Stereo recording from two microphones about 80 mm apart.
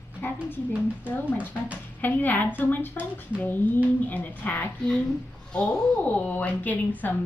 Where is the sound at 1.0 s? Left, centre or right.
Left.